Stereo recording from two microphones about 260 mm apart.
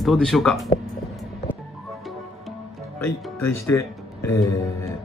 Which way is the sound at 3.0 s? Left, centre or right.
Centre.